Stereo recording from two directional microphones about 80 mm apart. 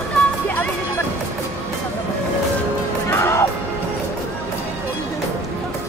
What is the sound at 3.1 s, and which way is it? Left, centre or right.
Music, left.